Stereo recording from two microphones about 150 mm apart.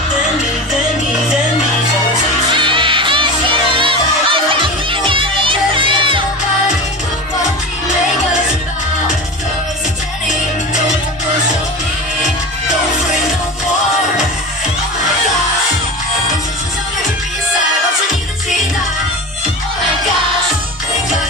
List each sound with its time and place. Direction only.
2.5 s music: 35° right (ahead or behind)